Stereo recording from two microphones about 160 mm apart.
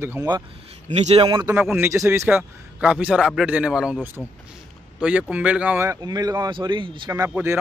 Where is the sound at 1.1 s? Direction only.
30° right (ahead or behind).